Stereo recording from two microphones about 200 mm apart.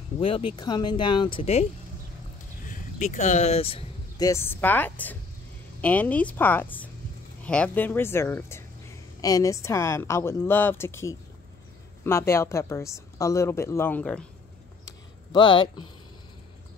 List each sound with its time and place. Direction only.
0.2 s speech: 25° left (ahead or behind)
2.7 s vehicle: 40° left (ahead or behind)
4.3 s a woman's voice: 10° left (ahead or behind)
14.9 s a sound: 25° left (ahead or behind)